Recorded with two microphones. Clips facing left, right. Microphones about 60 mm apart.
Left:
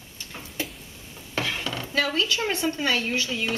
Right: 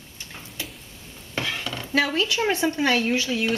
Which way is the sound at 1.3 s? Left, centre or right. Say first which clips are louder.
Even; centre.